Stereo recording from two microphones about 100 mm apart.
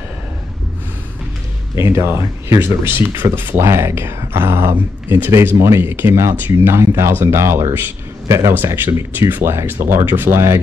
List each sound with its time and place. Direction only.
1.8 s a man's voice: 25° right (ahead or behind)